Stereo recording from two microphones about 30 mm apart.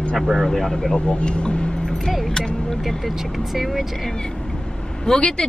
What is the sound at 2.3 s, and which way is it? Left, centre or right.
Vehicle, left.